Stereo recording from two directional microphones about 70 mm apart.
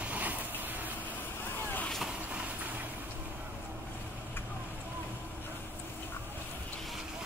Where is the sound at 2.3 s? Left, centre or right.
Centre.